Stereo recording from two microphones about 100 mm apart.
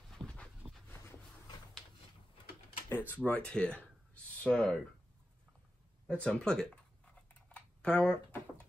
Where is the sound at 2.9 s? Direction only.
20° left (ahead or behind).